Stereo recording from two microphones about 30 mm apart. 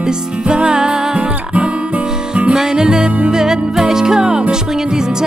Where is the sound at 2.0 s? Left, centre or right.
Right.